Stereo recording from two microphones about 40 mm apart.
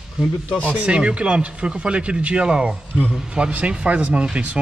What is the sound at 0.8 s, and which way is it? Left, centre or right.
Speech, right.